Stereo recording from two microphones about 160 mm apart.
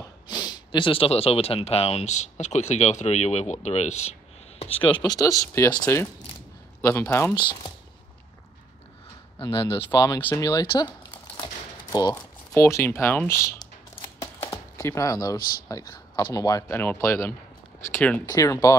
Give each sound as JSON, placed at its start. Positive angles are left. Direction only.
{"t": 0.3, "sound": "speech", "side_deg": 25}
{"t": 9.4, "sound": "speech", "side_deg": 30}
{"t": 14.2, "sound": "chopping", "side_deg": 20}
{"t": 16.3, "sound": "speech", "side_deg": 20}
{"t": 18.2, "sound": "speech", "side_deg": 20}